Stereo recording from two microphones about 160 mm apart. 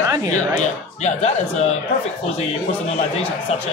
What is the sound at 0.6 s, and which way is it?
A man's voice, 45° left (ahead or behind).